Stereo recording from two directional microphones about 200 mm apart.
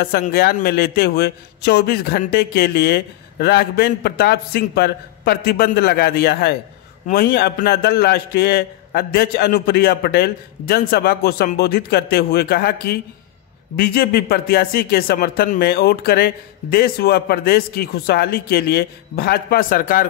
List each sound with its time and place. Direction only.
0.0 s a man's voice: 50° left (ahead or behind)